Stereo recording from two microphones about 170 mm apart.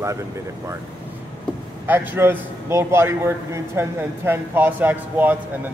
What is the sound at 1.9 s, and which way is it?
A man's voice, 15° right (ahead or behind).